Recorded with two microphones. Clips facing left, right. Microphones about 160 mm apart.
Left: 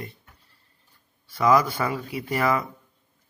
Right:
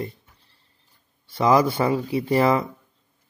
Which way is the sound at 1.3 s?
30° right (ahead or behind).